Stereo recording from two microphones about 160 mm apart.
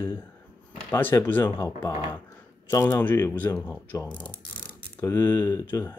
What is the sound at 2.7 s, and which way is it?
Speech, 20° left (ahead or behind).